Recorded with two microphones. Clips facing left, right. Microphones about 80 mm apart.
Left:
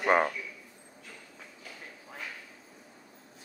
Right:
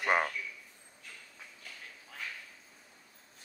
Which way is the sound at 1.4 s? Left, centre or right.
Centre.